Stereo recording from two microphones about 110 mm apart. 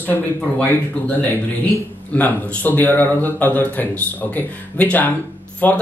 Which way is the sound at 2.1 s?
15° left (ahead or behind).